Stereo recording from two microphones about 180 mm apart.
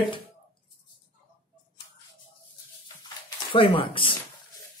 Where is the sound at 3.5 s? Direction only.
30° left (ahead or behind).